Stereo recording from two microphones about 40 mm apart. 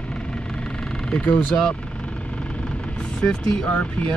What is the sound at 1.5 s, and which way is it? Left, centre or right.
Speech, left.